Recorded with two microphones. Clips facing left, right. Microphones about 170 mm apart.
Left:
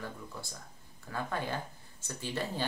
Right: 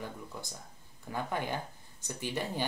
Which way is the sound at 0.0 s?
15° right (ahead or behind).